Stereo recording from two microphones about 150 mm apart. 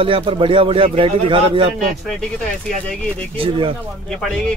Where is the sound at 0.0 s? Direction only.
35° right (ahead or behind).